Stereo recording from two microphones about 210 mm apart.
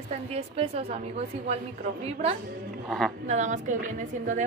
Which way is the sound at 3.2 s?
35° right (ahead or behind).